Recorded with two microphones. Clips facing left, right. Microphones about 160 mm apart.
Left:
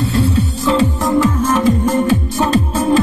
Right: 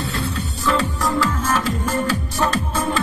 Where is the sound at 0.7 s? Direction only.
20° left (ahead or behind).